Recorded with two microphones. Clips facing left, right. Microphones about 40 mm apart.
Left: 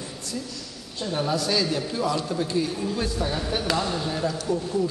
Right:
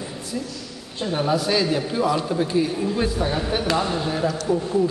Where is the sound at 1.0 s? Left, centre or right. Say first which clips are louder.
Right 4 dB; centre.